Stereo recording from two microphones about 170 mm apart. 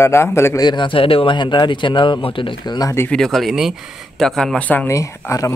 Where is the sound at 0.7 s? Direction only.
30° left (ahead or behind).